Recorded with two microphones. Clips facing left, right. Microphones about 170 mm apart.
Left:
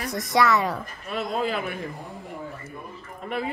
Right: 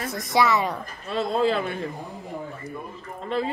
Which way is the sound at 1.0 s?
30° right (ahead or behind).